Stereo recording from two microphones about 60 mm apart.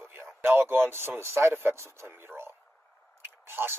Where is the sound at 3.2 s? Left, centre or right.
Right.